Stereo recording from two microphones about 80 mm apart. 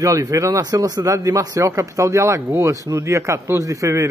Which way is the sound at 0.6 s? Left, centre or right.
Right.